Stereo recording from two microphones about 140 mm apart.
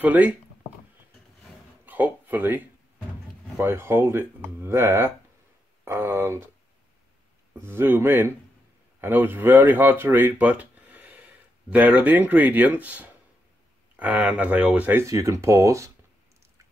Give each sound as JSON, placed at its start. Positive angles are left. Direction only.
{"t": 0.0, "sound": "speech", "side_deg": -10}
{"t": 1.9, "sound": "speech", "side_deg": -10}
{"t": 7.5, "sound": "speech", "side_deg": -15}